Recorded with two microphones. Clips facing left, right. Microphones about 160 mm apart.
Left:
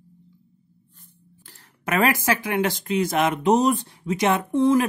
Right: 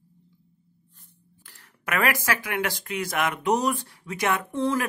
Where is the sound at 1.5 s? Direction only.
25° left (ahead or behind).